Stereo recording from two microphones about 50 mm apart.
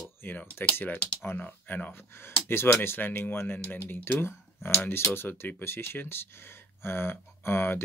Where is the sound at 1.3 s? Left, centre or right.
Left.